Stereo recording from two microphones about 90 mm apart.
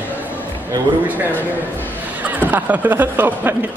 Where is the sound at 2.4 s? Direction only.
20° right (ahead or behind).